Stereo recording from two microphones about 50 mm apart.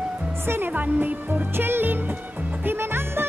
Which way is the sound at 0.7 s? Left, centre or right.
Right.